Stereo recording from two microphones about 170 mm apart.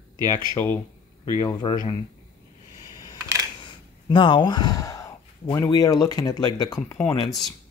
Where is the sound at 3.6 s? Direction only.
30° left (ahead or behind).